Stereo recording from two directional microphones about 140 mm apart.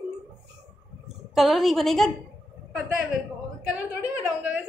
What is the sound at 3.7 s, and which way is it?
Speech, 10° right (ahead or behind).